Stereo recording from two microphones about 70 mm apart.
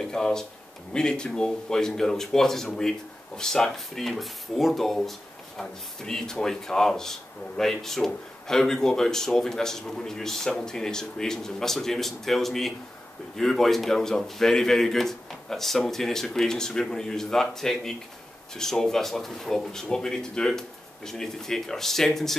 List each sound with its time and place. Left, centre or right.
0.0 s a man's voice: centre